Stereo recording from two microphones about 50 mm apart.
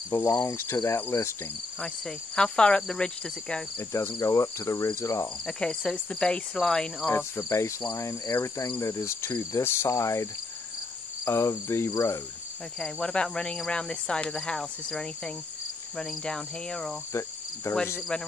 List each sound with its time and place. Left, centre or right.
0.1 s cricket: left
1.8 s speech: centre
3.9 s cricket: left
5.5 s speech: centre
7.2 s cricket: left
8.4 s cricket: left
8.8 s cricket: left
9.8 s cricket: left
11.2 s cricket: left
12.7 s speech: centre
17.1 s insect: left